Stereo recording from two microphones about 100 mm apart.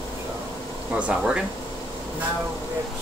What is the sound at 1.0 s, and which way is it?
Speech, 10° right (ahead or behind).